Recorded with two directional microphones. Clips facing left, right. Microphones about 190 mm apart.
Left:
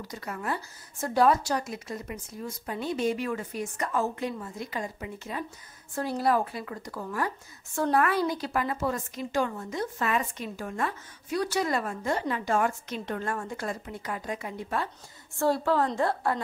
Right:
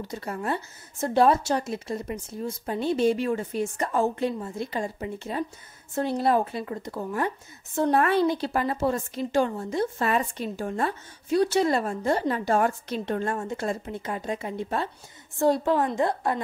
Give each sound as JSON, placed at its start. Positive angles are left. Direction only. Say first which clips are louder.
{"t": 0.0, "sound": "speech", "louder": "right 4 dB", "side_deg": -30}